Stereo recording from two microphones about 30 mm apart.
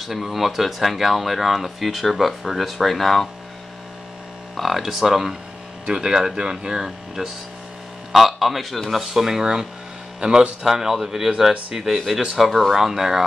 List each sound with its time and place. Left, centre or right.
0.0 s speech: centre
4.6 s speech: centre
4.8 s speech: centre
5.9 s speech: right
8.1 s speech: centre
9.4 s speech: right
10.6 s speech: centre